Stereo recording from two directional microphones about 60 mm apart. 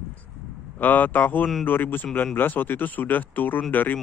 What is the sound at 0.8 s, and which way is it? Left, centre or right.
Speech, left.